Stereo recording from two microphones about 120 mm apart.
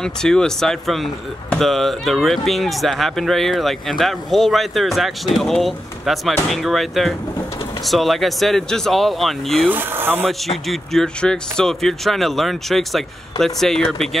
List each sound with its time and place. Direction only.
0.0 s speech: 5° left (ahead or behind)
9.7 s speech: 15° right (ahead or behind)
10.7 s speech: 5° left (ahead or behind)